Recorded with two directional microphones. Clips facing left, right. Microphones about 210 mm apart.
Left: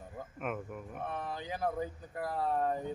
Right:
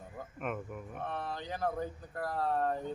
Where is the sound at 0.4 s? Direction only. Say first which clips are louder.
Even; centre (ahead or behind).